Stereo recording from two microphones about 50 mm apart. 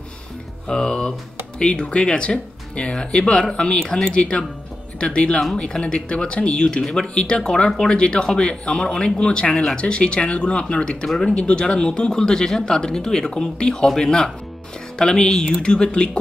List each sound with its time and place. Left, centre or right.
0.7 s speech: centre